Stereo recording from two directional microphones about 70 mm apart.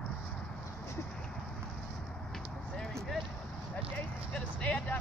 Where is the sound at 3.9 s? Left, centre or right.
Centre.